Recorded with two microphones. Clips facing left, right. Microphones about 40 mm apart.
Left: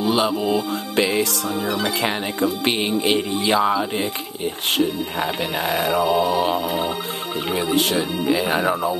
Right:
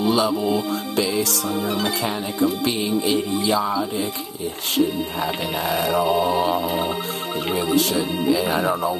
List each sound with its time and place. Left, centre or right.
0.1 s speech: left
0.9 s speech: left
7.7 s speech: left
8.5 s speech: left